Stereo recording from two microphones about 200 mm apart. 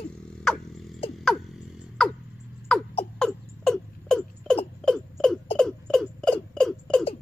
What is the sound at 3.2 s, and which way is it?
Rodents, centre (ahead or behind).